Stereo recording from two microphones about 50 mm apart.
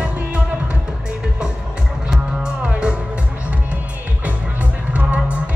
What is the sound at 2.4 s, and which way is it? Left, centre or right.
Music, right.